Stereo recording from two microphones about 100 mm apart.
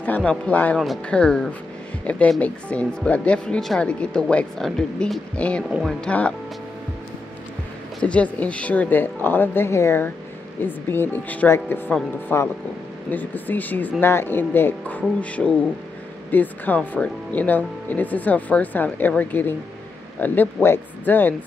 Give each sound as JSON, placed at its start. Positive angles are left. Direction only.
{"t": 0.0, "sound": "speech", "side_deg": 15}
{"t": 5.7, "sound": "speech", "side_deg": -5}
{"t": 5.9, "sound": "speech", "side_deg": 10}
{"t": 8.0, "sound": "speech", "side_deg": 10}